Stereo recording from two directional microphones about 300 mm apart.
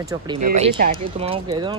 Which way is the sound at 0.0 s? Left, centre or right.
Centre.